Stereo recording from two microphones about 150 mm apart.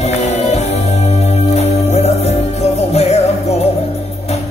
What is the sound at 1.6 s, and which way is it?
Music, 45° left (ahead or behind).